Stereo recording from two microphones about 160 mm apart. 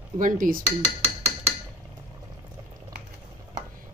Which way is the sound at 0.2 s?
55° right (ahead or behind).